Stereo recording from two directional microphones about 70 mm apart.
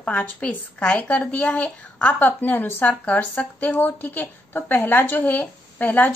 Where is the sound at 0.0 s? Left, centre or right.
Centre.